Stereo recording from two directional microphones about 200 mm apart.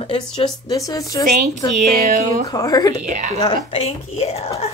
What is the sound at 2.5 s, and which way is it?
Speech, 20° left (ahead or behind).